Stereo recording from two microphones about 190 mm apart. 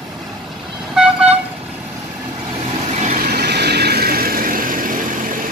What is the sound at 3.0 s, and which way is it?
Vehicle, 45° right (ahead or behind).